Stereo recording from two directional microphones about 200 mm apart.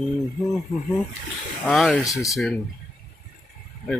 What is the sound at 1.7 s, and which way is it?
Speech, centre (ahead or behind).